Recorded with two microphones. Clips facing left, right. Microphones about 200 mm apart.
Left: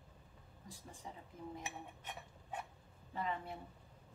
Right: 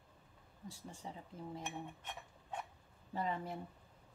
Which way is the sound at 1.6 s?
5° left (ahead or behind).